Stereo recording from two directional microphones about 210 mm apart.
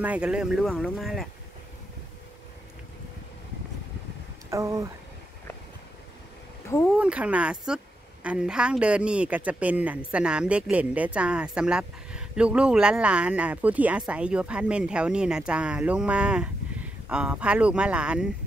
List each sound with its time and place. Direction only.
0.0 s speech: 5° right (ahead or behind)
4.5 s speech: 15° right (ahead or behind)
7.0 s speech: 5° right (ahead or behind)